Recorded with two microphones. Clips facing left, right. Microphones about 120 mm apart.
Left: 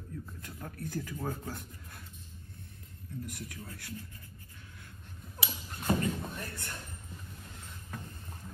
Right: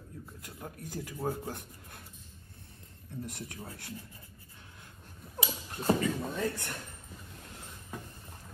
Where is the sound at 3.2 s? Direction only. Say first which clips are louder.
Right 1 dB; 25° right (ahead or behind).